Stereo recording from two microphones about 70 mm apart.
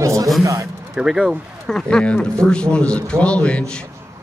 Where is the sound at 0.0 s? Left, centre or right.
Right.